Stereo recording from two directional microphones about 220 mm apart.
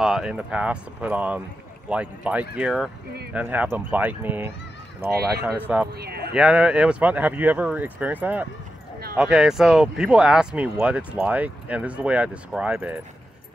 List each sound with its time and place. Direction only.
0.0 s speech: centre (ahead or behind)
5.9 s speech: 45° right (ahead or behind)
6.3 s speech: 5° right (ahead or behind)